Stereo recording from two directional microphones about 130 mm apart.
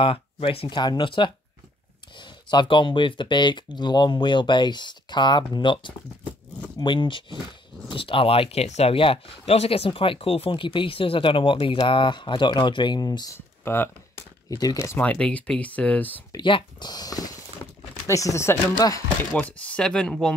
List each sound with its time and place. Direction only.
0.0 s speech: 45° left (ahead or behind)
14.6 s speech: 25° left (ahead or behind)
15.0 s speech: 10° left (ahead or behind)
16.3 s speech: 35° left (ahead or behind)
19.3 s speech: 10° left (ahead or behind)